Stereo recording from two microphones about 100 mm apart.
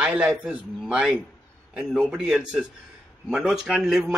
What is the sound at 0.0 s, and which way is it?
A man's voice, 10° right (ahead or behind).